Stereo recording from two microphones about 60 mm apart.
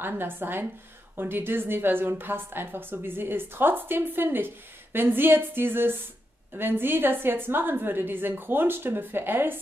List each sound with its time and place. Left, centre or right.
0.0 s a woman's voice: right